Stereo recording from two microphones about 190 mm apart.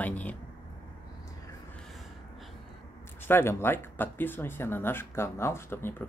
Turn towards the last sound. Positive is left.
turn(degrees=10)  # may be behind; listen again after turning